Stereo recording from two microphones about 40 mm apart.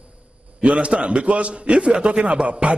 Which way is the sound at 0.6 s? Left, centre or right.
Right.